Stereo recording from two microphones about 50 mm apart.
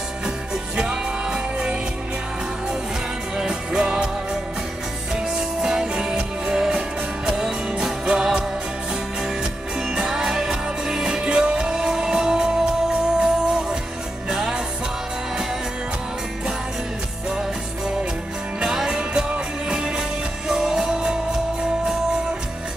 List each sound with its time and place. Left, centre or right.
0.7 s music: centre
3.3 s music: centre
18.6 s music: centre